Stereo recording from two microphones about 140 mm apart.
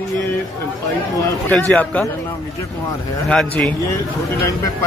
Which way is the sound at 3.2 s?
5° left (ahead or behind).